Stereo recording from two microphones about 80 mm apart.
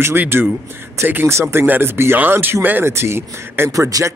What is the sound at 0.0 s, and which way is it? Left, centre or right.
Speech, right.